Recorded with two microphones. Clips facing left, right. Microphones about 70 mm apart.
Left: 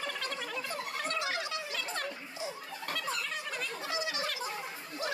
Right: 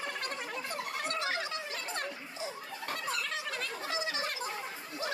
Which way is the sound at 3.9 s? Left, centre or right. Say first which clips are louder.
Even; right.